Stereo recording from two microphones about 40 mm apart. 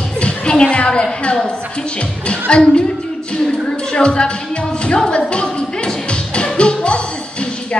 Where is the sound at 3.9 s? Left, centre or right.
Left.